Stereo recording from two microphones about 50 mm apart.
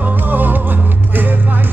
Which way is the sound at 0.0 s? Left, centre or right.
Right.